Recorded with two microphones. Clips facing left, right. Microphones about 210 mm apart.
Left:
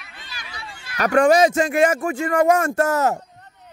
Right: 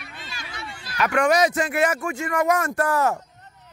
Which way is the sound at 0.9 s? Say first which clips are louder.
Left 5 dB; 40° left (ahead or behind).